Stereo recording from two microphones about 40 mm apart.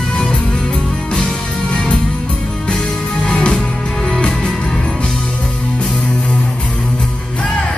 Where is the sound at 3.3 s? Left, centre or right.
Left.